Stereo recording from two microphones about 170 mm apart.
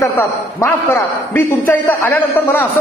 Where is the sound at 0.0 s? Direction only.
15° left (ahead or behind).